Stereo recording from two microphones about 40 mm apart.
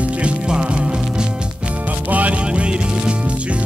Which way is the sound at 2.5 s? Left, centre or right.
Right.